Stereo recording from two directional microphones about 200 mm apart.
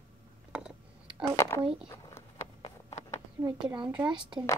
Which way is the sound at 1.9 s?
10° left (ahead or behind).